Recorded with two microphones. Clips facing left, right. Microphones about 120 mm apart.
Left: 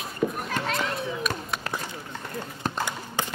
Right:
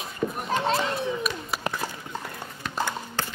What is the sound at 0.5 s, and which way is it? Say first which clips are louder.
Children playing: right 4 dB; 30° right (ahead or behind).